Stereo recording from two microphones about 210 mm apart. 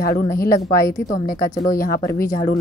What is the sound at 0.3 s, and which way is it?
Speech, 45° left (ahead or behind).